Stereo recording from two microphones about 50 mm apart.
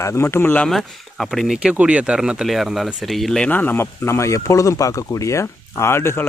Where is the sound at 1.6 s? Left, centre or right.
Right.